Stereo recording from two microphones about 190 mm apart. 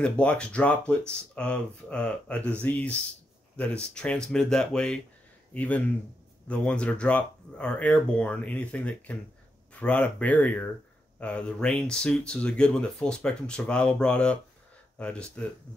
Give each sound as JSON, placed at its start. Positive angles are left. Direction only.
{"t": 0.0, "sound": "speech", "side_deg": 5}